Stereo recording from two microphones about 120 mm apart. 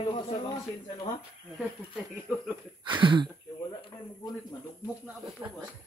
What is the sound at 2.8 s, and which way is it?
Speech, 40° right (ahead or behind).